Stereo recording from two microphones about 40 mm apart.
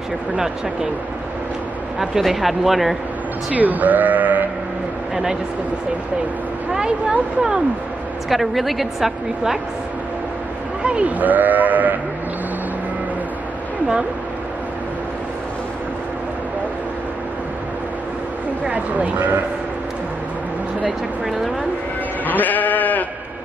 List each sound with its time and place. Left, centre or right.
2.2 s a woman's voice: centre
3.5 s speech: right
5.1 s speech: centre
6.7 s speech: centre
8.3 s a woman's voice: centre
10.8 s sheep: right
11.1 s speech: right
18.7 s speech: right
22.2 s sheep: left